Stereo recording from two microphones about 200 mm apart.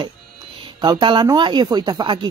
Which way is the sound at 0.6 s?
20° right (ahead or behind).